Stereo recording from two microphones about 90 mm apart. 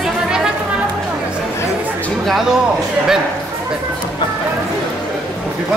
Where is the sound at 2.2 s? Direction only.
Centre (ahead or behind).